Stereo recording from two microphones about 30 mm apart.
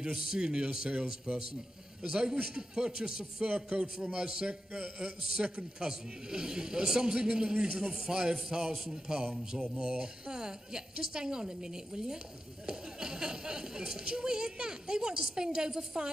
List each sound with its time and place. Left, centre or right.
0.0 s speech: right
1.3 s a man's voice: right
2.0 s speech: right
5.4 s a man's voice: right
5.9 s speech: right
7.9 s speech: right
9.6 s speech: right